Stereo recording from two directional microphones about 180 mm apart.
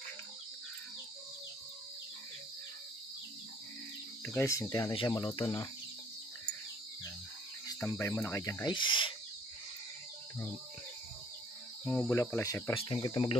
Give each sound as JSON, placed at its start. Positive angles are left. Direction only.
{"t": 4.2, "sound": "speech", "side_deg": 15}
{"t": 7.6, "sound": "speech", "side_deg": 15}
{"t": 11.8, "sound": "cricket", "side_deg": 5}
{"t": 12.2, "sound": "speech", "side_deg": 15}
{"t": 12.9, "sound": "speech", "side_deg": 30}